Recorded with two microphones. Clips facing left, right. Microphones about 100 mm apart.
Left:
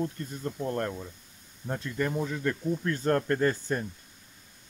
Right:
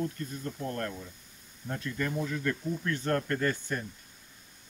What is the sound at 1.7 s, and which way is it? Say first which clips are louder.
Speech: left 3 dB; 20° left (ahead or behind).